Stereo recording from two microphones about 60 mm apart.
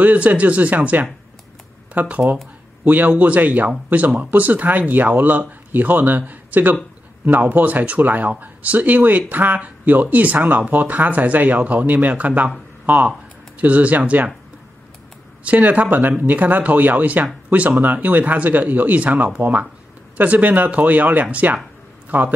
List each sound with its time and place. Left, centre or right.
0.0 s a man's voice: right
15.4 s speech: right